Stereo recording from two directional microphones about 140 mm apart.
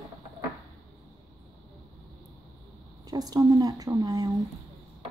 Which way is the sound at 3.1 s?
25° right (ahead or behind).